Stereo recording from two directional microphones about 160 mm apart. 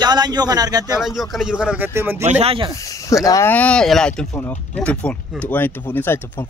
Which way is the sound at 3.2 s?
20° left (ahead or behind).